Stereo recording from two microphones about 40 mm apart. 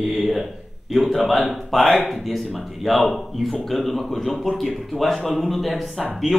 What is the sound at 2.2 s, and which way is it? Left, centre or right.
Speech, centre.